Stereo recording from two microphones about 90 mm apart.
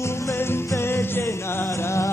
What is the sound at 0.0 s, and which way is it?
Music, 30° left (ahead or behind).